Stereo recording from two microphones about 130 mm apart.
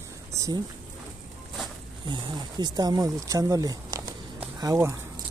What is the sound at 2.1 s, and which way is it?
Speech, 35° right (ahead or behind).